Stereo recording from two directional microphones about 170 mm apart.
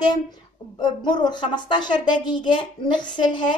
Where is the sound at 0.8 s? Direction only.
25° left (ahead or behind).